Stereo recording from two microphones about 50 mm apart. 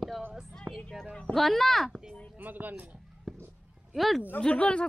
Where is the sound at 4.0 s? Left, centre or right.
Centre.